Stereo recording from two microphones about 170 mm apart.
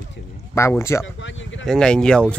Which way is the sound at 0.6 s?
15° left (ahead or behind).